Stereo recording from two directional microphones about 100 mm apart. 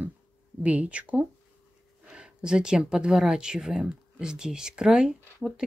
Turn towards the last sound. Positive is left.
turn(degrees=-5)  # may be behind; listen again after turning